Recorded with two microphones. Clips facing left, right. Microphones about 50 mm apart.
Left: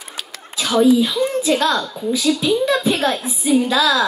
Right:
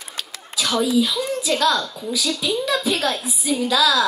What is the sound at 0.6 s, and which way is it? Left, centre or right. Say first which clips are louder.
Speech: left 5 dB; left.